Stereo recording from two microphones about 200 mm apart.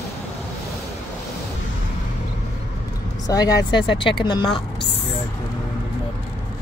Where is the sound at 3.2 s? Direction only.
20° left (ahead or behind).